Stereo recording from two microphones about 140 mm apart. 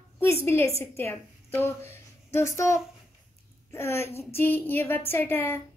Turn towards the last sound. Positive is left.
turn(degrees=15)  # may be behind; listen again after turning